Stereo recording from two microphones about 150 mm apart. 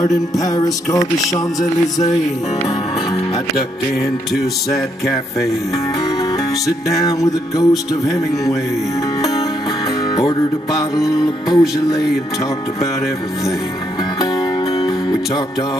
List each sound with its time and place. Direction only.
0.4 s music: 25° left (ahead or behind)
7.0 s music: 25° left (ahead or behind)
10.1 s music: 25° left (ahead or behind)
14.8 s music: 30° left (ahead or behind)